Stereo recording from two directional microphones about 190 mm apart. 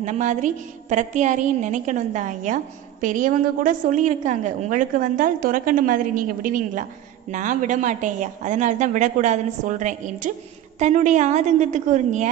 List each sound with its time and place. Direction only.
0.0 s a woman's voice: 40° right (ahead or behind)